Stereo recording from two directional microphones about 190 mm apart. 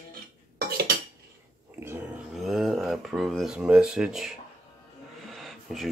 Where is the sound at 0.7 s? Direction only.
55° right (ahead or behind).